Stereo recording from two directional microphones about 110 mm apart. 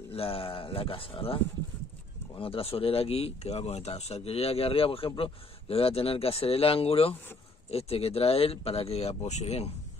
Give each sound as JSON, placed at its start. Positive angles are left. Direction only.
{"t": 0.1, "sound": "speech", "side_deg": 60}